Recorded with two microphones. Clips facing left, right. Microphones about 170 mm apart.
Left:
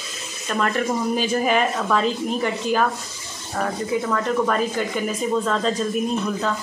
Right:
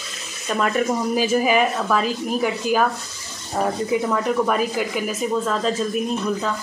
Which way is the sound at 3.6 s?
15° right (ahead or behind).